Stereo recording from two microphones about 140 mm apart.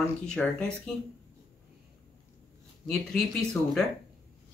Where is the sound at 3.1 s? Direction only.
Centre (ahead or behind).